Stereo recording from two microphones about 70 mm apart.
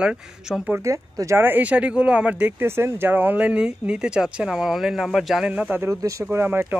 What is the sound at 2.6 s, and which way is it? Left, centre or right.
Speech, right.